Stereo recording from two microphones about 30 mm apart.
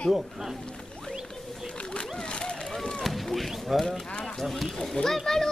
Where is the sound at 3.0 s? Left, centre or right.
Centre.